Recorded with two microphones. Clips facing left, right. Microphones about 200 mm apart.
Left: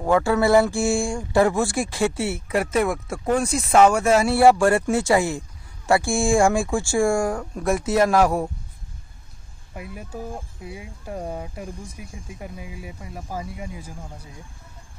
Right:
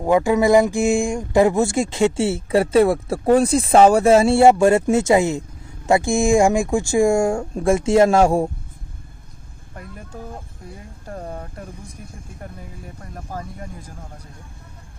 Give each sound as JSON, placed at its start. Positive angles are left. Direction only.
{"t": 0.0, "sound": "speech", "side_deg": -15}
{"t": 9.8, "sound": "speech", "side_deg": 10}